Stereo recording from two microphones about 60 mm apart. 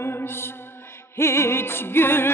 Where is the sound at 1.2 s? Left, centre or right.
Left.